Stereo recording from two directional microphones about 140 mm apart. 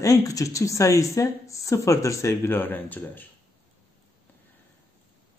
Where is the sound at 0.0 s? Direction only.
25° left (ahead or behind).